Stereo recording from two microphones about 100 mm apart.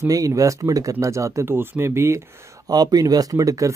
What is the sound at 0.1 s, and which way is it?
Speech, 35° right (ahead or behind).